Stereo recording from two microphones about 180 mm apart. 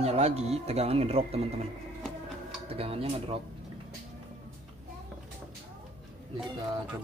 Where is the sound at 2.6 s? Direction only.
35° right (ahead or behind).